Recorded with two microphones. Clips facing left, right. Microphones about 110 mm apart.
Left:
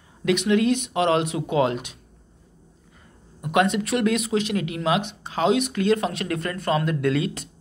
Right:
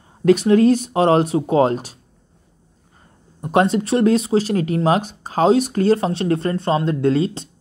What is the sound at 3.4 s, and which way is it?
Speech, 35° right (ahead or behind).